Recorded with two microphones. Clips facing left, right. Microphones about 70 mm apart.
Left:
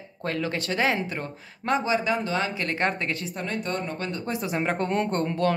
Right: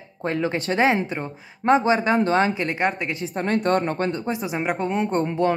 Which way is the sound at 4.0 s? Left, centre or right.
Right.